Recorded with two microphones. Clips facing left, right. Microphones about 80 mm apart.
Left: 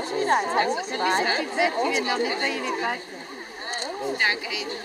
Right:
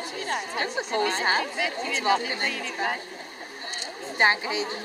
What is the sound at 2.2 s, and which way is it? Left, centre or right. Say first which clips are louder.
Speech: left 4 dB; centre.